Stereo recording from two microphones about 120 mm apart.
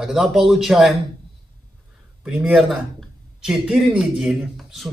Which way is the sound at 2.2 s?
5° right (ahead or behind).